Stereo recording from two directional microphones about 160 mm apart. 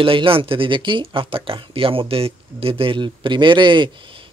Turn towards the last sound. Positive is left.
turn(degrees=-30)  # may be behind; listen again after turning